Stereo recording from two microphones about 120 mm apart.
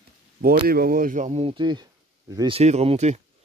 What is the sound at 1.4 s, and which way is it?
Speech, 40° right (ahead or behind).